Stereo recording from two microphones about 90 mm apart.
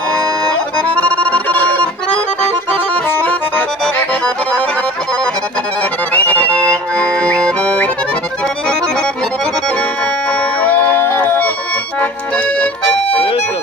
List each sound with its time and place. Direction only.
0.7 s music: 15° left (ahead or behind)
2.4 s accordion: 15° left (ahead or behind)
5.8 s accordion: 20° left (ahead or behind)
10.3 s music: 15° left (ahead or behind)